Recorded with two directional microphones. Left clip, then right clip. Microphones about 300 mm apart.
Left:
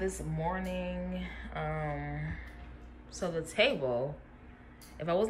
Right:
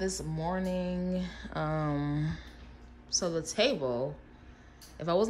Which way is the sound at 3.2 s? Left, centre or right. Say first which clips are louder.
Left 1 dB; centre.